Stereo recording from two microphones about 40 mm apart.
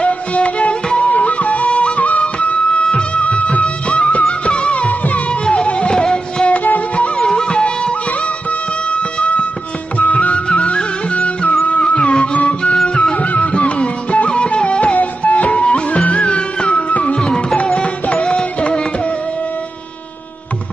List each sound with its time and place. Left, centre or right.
0.0 s music: left
1.7 s music: left
5.4 s music: left
5.9 s music: centre
6.5 s music: left
7.2 s music: left
10.5 s music: left
15.0 s music: left